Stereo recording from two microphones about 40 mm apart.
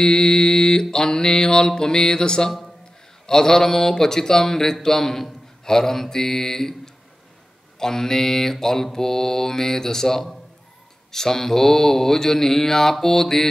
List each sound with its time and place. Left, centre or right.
0.0 s mantra: centre
7.8 s mantra: centre